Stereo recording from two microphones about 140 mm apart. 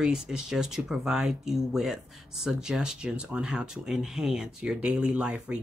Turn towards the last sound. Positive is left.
turn(degrees=-5)  # may be behind; listen again after turning